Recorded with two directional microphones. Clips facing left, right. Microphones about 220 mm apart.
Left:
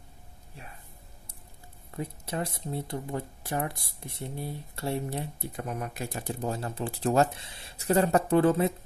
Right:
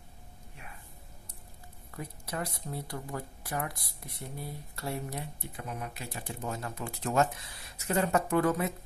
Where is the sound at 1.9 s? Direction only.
25° left (ahead or behind).